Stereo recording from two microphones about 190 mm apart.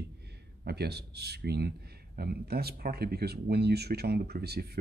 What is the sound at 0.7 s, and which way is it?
Speech, 60° right (ahead or behind).